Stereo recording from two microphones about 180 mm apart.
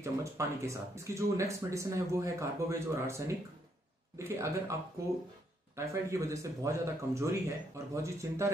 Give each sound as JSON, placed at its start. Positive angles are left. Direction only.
{"t": 0.0, "sound": "speech", "side_deg": -15}
{"t": 5.8, "sound": "speech", "side_deg": -15}